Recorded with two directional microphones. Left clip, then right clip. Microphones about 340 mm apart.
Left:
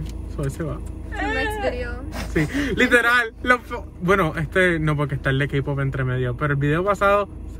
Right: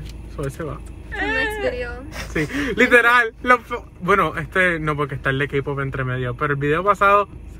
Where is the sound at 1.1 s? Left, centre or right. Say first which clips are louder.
Right 2 dB; centre.